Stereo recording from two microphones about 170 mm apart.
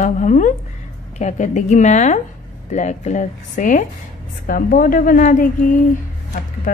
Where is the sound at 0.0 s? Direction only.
50° left (ahead or behind).